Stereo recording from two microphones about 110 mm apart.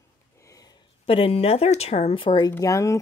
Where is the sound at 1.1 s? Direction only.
60° left (ahead or behind).